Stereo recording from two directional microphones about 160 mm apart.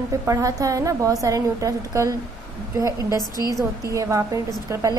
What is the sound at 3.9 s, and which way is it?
A woman's voice, 20° right (ahead or behind).